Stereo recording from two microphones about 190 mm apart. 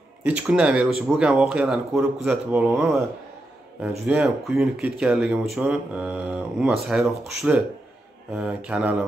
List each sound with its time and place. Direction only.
0.2 s speech: 5° right (ahead or behind)
4.0 s speech: 5° right (ahead or behind)